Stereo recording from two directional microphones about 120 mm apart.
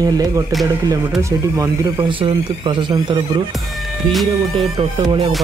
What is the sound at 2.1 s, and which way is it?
Speech, 45° right (ahead or behind).